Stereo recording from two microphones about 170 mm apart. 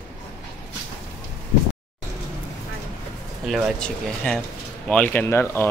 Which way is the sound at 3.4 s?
Centre (ahead or behind).